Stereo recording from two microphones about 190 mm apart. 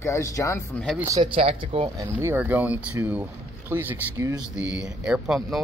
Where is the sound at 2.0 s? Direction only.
10° right (ahead or behind).